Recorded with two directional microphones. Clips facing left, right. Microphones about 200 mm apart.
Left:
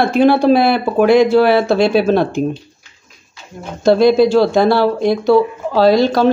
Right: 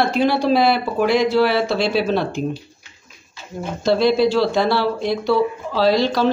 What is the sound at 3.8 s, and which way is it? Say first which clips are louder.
Speech: left 6 dB; 50° left (ahead or behind).